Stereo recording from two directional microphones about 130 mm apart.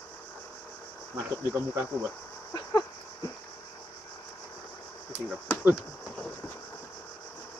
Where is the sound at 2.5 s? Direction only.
25° left (ahead or behind).